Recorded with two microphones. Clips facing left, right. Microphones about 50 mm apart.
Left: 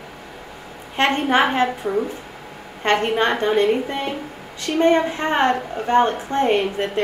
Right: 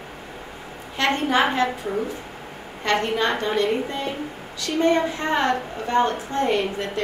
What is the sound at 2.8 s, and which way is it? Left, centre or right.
A woman's voice, left.